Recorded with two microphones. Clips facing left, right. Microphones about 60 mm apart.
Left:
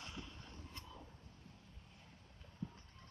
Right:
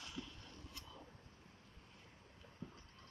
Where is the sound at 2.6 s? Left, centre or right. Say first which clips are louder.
Left 5 dB; right.